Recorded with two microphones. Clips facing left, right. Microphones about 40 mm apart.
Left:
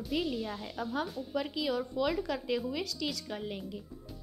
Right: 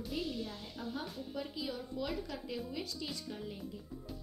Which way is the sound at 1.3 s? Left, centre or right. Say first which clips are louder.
Left 9 dB; left.